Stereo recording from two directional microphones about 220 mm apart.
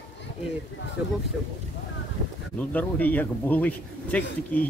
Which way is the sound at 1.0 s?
5° right (ahead or behind).